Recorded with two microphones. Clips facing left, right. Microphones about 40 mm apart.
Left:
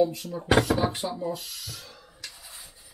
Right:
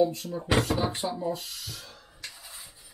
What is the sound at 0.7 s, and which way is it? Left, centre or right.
Speech, centre.